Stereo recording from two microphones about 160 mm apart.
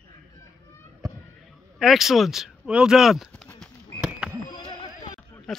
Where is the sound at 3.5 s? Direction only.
5° right (ahead or behind).